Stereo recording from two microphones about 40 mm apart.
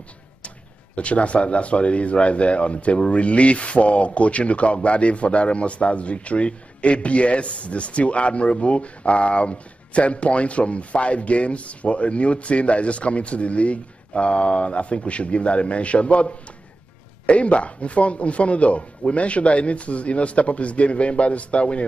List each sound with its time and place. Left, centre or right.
0.9 s speech: left